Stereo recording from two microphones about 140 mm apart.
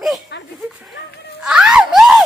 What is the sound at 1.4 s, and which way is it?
Speech, 5° right (ahead or behind).